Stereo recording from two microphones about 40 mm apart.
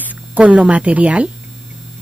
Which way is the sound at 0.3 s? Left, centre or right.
Right.